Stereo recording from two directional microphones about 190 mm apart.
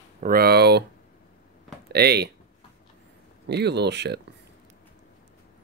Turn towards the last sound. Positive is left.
turn(degrees=-65)  # may be behind; listen again after turning